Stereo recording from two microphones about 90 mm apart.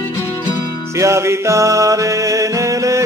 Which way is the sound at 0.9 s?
35° right (ahead or behind).